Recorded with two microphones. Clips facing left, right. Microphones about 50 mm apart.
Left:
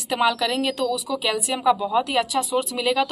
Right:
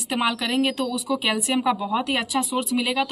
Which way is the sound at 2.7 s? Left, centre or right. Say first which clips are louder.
Even; centre.